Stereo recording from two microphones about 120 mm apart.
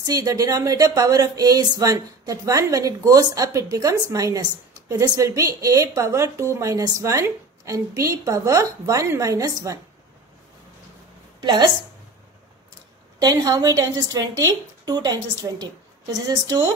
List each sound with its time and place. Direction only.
0.0 s a woman's voice: 30° right (ahead or behind)
11.4 s a woman's voice: 35° right (ahead or behind)
13.2 s a woman's voice: 35° right (ahead or behind)